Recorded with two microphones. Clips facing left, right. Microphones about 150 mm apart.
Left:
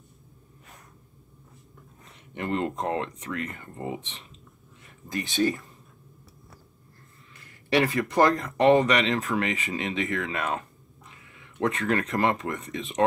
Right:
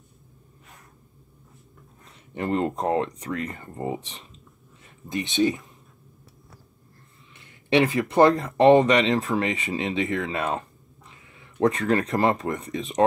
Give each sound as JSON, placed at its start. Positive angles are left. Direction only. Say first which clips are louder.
{"t": 2.3, "sound": "speech", "louder": "right 3 dB", "side_deg": -35}
{"t": 5.0, "sound": "speech", "louder": "right 3 dB", "side_deg": -20}
{"t": 7.3, "sound": "a sound", "louder": "right 3 dB", "side_deg": -25}
{"t": 8.1, "sound": "speech", "louder": "right 5 dB", "side_deg": -30}
{"t": 11.1, "sound": "a sound", "louder": "right 1 dB", "side_deg": -30}
{"t": 11.9, "sound": "speech", "louder": "right 3 dB", "side_deg": -35}